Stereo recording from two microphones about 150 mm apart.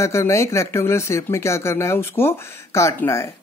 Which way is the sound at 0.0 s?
20° left (ahead or behind).